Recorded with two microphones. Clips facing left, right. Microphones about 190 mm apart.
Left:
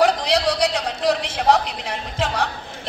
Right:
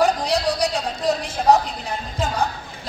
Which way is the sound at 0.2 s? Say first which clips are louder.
Left 1 dB; 75° left (ahead or behind).